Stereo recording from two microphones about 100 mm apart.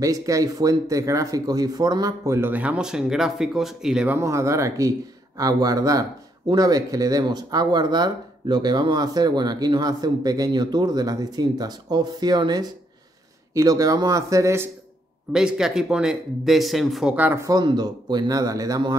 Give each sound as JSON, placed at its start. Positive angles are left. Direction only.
{"t": 0.0, "sound": "speech", "side_deg": -35}
{"t": 4.2, "sound": "speech", "side_deg": -30}
{"t": 15.3, "sound": "speech", "side_deg": -5}
{"t": 17.1, "sound": "speech", "side_deg": -15}
{"t": 17.4, "sound": "speech", "side_deg": -40}